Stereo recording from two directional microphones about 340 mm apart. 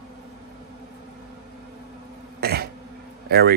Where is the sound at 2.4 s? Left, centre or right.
Right.